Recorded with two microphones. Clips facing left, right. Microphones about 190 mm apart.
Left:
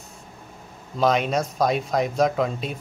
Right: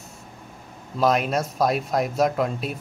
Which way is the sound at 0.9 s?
5° right (ahead or behind).